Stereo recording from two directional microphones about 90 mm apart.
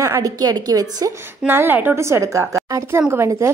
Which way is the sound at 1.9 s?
30° right (ahead or behind).